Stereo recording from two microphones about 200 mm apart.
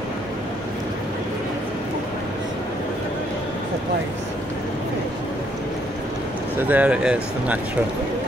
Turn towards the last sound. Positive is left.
turn(degrees=-5)  # may be behind; listen again after turning